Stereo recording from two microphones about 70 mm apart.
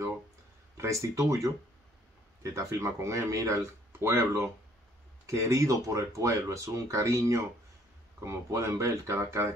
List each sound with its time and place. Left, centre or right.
0.7 s speech: right